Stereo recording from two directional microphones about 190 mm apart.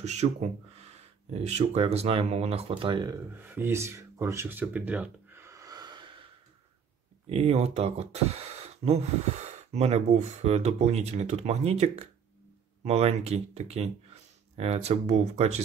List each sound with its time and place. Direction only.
0.0 s speech: 35° right (ahead or behind)
3.4 s a sound: 10° right (ahead or behind)
7.2 s speech: 30° right (ahead or behind)